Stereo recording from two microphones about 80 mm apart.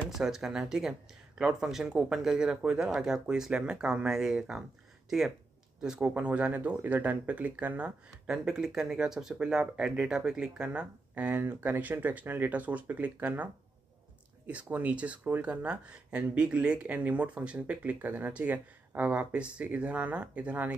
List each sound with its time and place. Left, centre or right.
0.1 s speech: centre
5.8 s speech: centre